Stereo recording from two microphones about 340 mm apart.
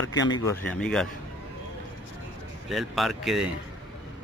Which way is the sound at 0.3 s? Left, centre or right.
Centre.